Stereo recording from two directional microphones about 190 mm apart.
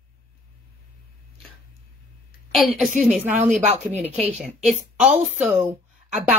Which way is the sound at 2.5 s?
Centre (ahead or behind).